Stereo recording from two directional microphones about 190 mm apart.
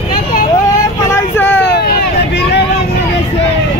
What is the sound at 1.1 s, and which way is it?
Vehicle, 15° left (ahead or behind).